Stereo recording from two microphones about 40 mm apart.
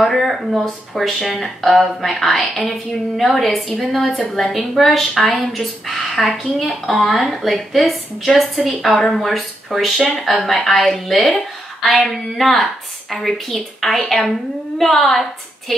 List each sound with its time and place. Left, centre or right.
0.0 s speech: centre